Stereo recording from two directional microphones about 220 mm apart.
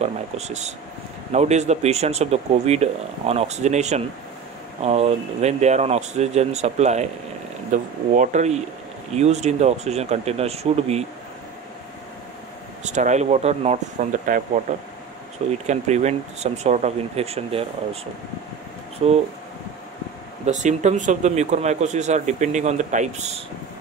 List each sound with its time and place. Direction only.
0.0 s speech: 30° right (ahead or behind)
12.8 s speech: 35° right (ahead or behind)
15.6 s speech: 30° right (ahead or behind)
19.0 s speech: 25° right (ahead or behind)
20.4 s speech: 30° right (ahead or behind)